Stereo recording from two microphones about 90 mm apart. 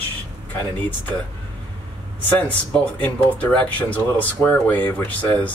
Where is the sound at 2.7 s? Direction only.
15° left (ahead or behind).